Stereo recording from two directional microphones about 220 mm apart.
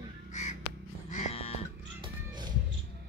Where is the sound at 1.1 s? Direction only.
30° left (ahead or behind).